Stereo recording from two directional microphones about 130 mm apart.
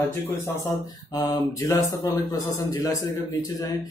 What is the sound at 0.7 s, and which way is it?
Speech, 30° left (ahead or behind).